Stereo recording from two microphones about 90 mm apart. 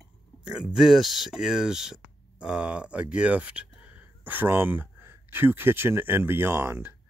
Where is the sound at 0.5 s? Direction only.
5° right (ahead or behind).